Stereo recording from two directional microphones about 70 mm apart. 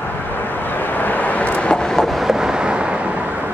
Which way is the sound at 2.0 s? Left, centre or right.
Centre.